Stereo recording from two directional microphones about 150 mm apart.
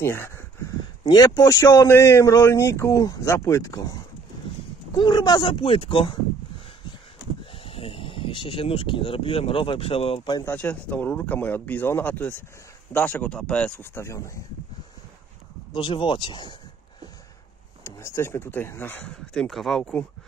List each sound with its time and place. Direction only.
0.0 s speech: 15° left (ahead or behind)
1.0 s speech: 25° left (ahead or behind)
7.5 s speech: 40° left (ahead or behind)
10.4 s speech: 10° left (ahead or behind)
15.7 s speech: 35° left (ahead or behind)
17.8 s speech: 20° left (ahead or behind); by 19.9 s centre (ahead or behind)